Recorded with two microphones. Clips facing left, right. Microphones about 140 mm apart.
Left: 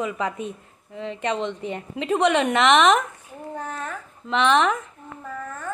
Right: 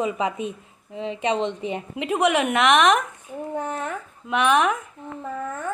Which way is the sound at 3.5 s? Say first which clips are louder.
Right 4 dB; 20° right (ahead or behind).